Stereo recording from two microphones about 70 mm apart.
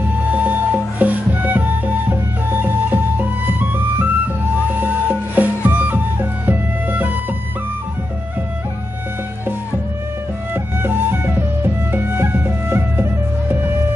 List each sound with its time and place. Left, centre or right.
0.0 s music: right
10.5 s music: right